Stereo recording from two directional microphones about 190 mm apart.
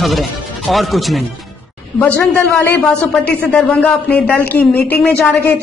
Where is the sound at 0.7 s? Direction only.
Centre (ahead or behind).